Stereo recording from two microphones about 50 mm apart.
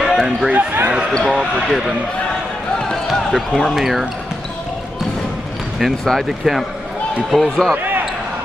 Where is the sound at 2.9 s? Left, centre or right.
Centre.